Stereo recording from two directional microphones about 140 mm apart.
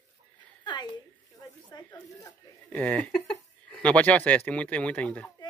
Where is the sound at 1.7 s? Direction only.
25° left (ahead or behind).